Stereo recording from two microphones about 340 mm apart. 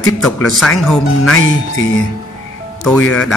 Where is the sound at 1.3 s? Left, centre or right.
Left.